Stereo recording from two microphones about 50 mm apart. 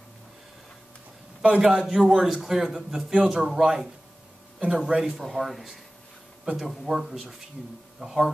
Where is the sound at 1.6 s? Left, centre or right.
Centre.